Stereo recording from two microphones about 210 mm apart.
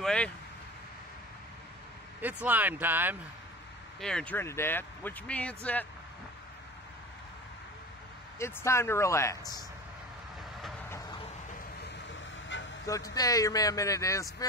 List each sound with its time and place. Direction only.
0.0 s vehicle: 5° left (ahead or behind)
2.2 s speech: 10° right (ahead or behind)
4.0 s speech: 5° left (ahead or behind)
8.4 s speech: 10° left (ahead or behind)
10.9 s a sound: 20° left (ahead or behind)
11.8 s vehicle: 60° left (ahead or behind)
12.8 s speech: 15° left (ahead or behind)